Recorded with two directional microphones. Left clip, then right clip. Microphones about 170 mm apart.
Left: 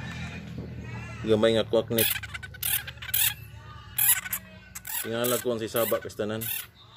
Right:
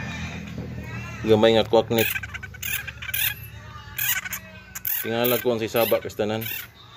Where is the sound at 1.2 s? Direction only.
Centre (ahead or behind).